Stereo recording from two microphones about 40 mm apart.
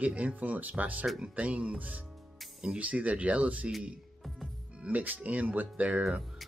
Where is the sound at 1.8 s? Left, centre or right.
Right.